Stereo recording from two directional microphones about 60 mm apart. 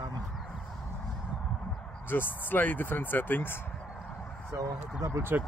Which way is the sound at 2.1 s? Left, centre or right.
Left.